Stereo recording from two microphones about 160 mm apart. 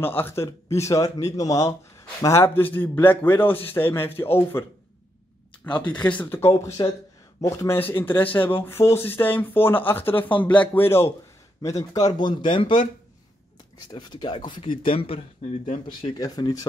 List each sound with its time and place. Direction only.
0.2 s speech: 15° left (ahead or behind)
5.9 s speech: 10° left (ahead or behind)
6.5 s speech: 25° left (ahead or behind)
13.8 s speech: 25° left (ahead or behind)